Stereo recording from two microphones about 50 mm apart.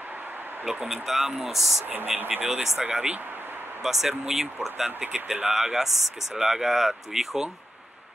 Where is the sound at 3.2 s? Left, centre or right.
Right.